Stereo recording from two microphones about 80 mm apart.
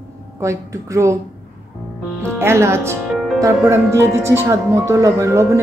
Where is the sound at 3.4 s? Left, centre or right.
Right.